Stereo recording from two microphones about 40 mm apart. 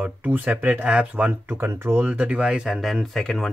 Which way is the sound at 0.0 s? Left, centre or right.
Right.